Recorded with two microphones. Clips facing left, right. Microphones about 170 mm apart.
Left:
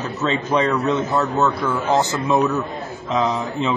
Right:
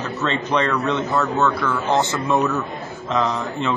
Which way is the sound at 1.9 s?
Centre (ahead or behind).